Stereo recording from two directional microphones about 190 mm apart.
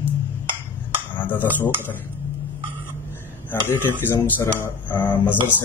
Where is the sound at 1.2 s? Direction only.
10° left (ahead or behind).